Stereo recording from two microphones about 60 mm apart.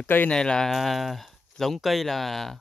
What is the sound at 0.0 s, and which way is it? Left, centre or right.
Speech, left.